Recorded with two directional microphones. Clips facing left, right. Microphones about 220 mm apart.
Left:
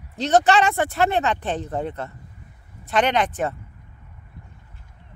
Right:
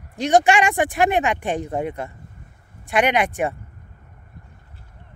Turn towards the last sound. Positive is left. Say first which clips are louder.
# right 1 dB
turn(degrees=-10)  # may be behind; listen again after turning